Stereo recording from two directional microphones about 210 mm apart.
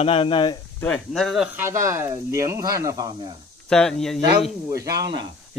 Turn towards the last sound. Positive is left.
turn(degrees=-20)  # may be behind; listen again after turning